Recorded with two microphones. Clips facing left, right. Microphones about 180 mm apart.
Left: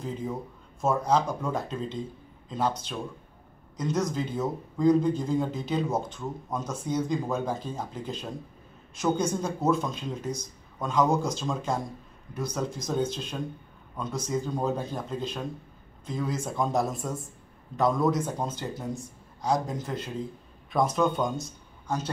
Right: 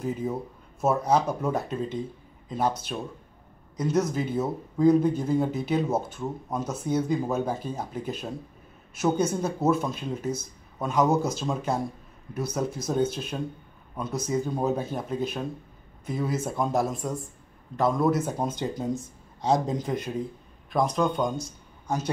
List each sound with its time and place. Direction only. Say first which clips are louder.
0.0 s a man's voice: right 4 dB; 10° right (ahead or behind)
20.7 s speech: even; centre (ahead or behind)
21.8 s a man's voice: right 2 dB; 10° right (ahead or behind)